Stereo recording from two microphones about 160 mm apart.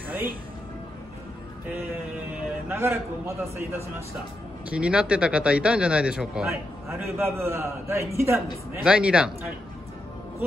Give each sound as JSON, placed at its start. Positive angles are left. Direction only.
{"t": 2.3, "sound": "a man's voice", "side_deg": -15}
{"t": 4.6, "sound": "a man's voice", "side_deg": -5}
{"t": 6.5, "sound": "a man's voice", "side_deg": -15}